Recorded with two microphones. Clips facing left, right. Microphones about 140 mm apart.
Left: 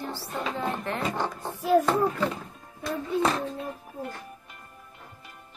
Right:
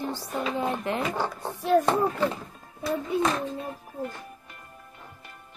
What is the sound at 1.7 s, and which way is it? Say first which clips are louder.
Speech: even; 5° left (ahead or behind).